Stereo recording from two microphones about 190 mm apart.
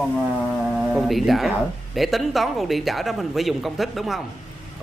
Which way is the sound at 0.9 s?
Centre (ahead or behind).